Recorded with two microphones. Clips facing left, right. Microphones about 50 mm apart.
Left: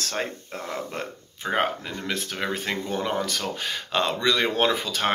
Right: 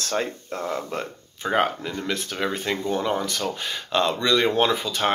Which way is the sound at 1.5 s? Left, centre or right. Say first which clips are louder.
Right 3 dB; left.